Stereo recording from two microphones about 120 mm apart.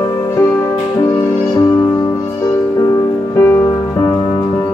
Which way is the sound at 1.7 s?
10° left (ahead or behind).